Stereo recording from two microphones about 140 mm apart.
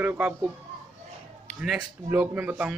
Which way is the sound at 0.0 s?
10° right (ahead or behind).